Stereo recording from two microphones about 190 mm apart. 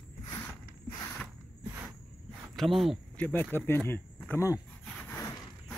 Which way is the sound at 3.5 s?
10° left (ahead or behind).